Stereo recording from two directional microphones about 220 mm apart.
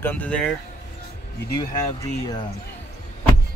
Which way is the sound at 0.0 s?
5° left (ahead or behind).